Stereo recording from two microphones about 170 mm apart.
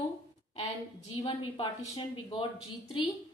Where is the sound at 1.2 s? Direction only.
30° left (ahead or behind).